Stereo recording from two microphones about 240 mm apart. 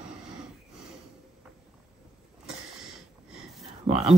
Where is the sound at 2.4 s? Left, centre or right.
Centre.